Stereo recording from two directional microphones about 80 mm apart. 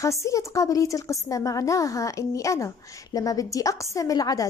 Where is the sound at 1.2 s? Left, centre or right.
Left.